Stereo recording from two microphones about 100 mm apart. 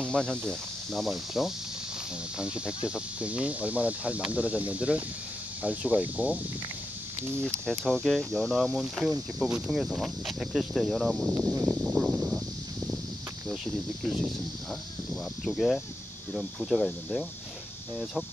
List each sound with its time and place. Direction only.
0.0 s speech: 5° left (ahead or behind); by 6.4 s 15° right (ahead or behind)
7.7 s speech: centre (ahead or behind)
11.3 s speech: 20° right (ahead or behind)
11.6 s speech: 10° right (ahead or behind)
14.0 s speech: 5° right (ahead or behind)
15.4 s speech: centre (ahead or behind)